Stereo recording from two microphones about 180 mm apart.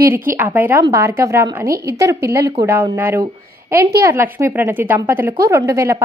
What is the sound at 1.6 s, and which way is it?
Speech, 55° right (ahead or behind).